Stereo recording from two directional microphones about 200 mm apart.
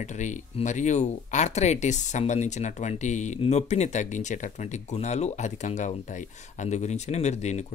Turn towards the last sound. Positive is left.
turn(degrees=35)  # may be behind; listen again after turning